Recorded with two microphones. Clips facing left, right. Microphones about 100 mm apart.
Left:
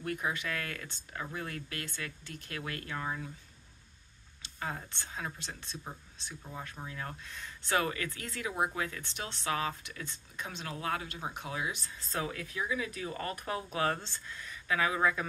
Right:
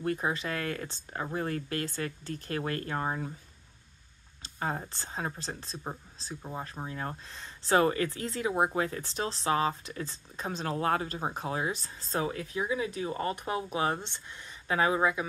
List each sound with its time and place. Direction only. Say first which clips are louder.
0.0 s speech: right 4 dB; 30° right (ahead or behind)
4.4 s speech: right 5 dB; 35° right (ahead or behind)